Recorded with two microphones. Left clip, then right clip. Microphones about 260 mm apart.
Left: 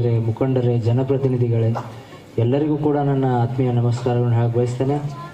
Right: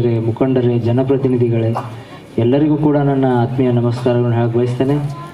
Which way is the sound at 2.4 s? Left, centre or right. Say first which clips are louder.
Right 5 dB; right.